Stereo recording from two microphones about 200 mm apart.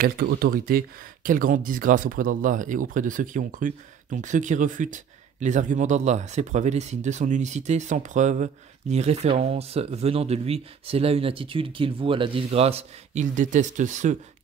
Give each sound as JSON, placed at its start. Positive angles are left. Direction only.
{"t": 0.0, "sound": "speech", "side_deg": -50}